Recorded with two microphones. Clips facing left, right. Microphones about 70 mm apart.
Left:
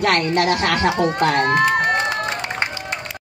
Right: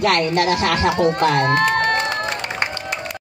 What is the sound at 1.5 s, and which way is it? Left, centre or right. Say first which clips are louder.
Crowd: even; centre.